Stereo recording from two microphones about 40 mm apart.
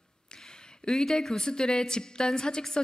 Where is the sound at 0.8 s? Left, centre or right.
Centre.